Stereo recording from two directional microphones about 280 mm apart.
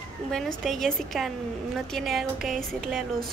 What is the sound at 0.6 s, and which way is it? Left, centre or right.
A woman's voice, centre.